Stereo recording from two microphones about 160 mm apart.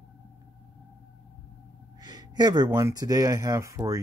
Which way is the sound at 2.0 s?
25° right (ahead or behind).